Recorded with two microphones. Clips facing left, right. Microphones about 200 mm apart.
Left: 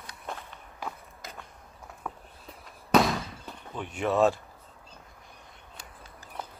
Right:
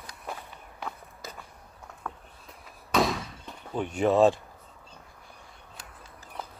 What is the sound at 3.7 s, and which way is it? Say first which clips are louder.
Speech: right 6 dB; 40° right (ahead or behind).